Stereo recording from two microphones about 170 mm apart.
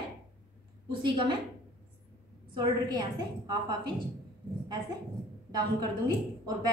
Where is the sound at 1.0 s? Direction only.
30° right (ahead or behind).